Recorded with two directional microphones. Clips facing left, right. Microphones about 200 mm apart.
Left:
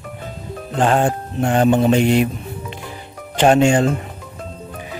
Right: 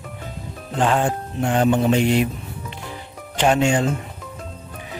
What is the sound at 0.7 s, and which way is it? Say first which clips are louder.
Music: left 3 dB; 45° left (ahead or behind).